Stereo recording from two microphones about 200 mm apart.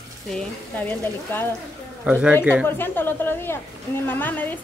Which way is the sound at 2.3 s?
10° left (ahead or behind).